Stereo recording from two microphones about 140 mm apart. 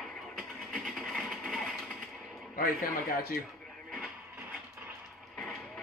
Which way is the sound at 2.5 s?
90° left.